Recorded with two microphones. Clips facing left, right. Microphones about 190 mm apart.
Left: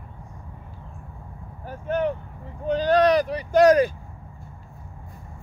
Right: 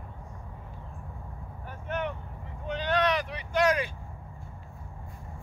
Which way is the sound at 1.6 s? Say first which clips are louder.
Left 9 dB; 35° left (ahead or behind).